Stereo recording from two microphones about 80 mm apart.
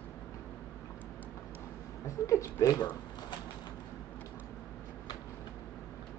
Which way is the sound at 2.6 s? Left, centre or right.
Left.